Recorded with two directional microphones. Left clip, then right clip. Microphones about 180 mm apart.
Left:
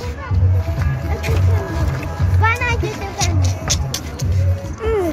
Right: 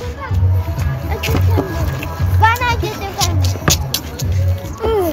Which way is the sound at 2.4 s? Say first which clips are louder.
Right 4 dB; 15° left (ahead or behind).